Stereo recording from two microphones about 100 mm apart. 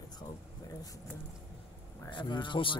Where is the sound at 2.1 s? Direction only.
55° left (ahead or behind).